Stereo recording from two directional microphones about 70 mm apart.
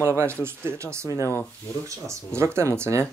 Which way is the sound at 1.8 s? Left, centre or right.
Right.